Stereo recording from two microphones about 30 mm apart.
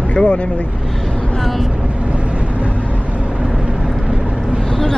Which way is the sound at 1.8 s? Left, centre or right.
Right.